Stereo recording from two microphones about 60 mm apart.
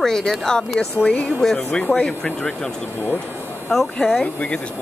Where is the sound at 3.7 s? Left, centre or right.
Centre.